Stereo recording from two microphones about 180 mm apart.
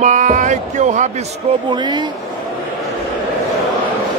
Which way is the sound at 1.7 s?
25° right (ahead or behind).